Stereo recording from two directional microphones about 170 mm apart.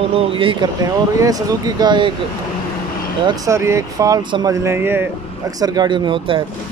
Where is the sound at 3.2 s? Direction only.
20° right (ahead or behind).